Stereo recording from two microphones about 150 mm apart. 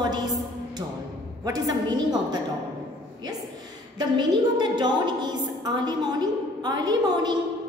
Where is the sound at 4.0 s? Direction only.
30° right (ahead or behind).